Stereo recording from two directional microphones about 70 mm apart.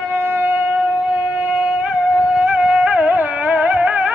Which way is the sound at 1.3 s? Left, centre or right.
Centre.